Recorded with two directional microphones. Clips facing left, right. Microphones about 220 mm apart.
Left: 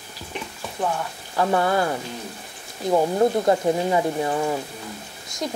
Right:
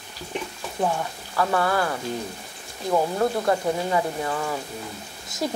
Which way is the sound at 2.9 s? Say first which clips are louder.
Left 3 dB; 20° left (ahead or behind).